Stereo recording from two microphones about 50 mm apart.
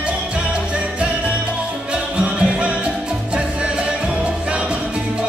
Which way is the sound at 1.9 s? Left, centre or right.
Centre.